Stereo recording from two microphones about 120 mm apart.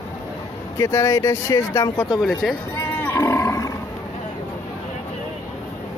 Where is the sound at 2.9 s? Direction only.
25° left (ahead or behind).